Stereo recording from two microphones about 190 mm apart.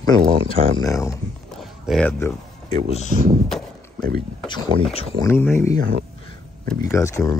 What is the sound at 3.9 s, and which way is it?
Speech, 50° right (ahead or behind).